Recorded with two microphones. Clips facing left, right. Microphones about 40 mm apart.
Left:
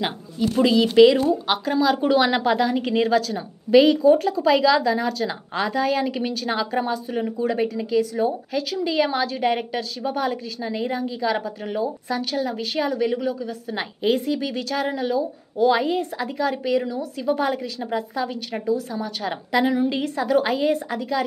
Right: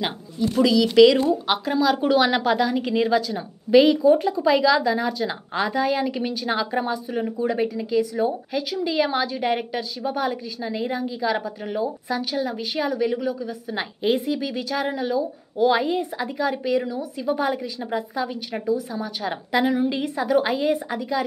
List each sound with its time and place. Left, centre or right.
0.6 s a woman's voice: left
0.8 s speech: left
1.3 s a woman's voice: centre
3.2 s a woman's voice: centre
6.0 s a woman's voice: centre
6.4 s a woman's voice: centre